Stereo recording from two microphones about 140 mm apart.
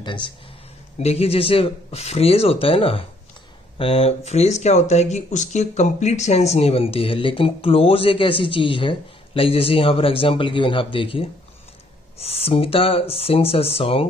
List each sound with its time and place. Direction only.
0.0 s speech: 35° left (ahead or behind)
0.9 s speech: 50° left (ahead or behind)